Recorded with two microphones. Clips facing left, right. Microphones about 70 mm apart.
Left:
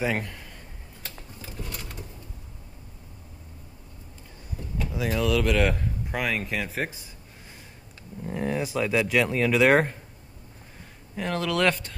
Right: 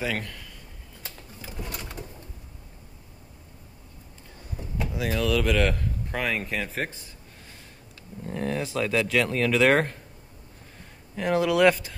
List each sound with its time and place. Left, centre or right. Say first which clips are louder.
0.0 s a man's voice: left 2 dB; left
1.6 s bird: right 2 dB; right
4.9 s speech: left 1 dB; centre
8.2 s speech: left 1 dB; centre
11.1 s speech: right 4 dB; centre